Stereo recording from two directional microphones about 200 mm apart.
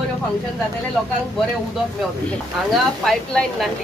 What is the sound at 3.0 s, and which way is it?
Speech, centre (ahead or behind).